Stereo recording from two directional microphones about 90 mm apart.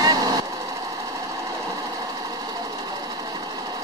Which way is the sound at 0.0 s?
45° right (ahead or behind).